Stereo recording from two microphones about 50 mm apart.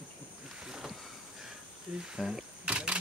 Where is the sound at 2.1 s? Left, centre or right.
Centre.